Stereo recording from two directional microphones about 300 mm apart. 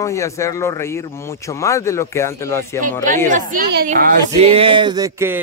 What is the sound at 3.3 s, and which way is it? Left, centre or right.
Speech, right.